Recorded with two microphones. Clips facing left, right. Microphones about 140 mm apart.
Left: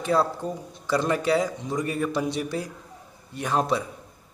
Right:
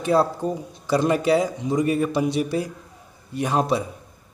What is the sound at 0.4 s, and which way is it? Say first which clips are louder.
Speech: right 5 dB; 10° right (ahead or behind).